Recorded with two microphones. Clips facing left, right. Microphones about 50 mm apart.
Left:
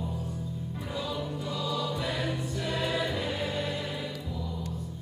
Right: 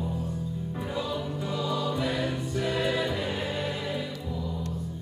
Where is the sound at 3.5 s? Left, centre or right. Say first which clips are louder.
Right 1 dB; right.